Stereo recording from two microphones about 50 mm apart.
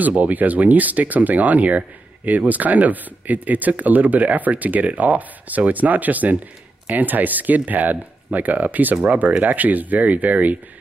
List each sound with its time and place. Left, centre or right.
0.0 s speech: right